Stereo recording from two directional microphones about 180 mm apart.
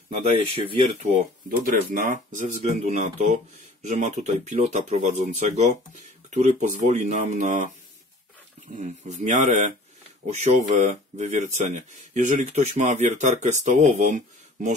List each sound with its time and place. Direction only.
0.3 s speech: 35° right (ahead or behind)
1.1 s speech: 50° right (ahead or behind)
8.7 s speech: 45° right (ahead or behind)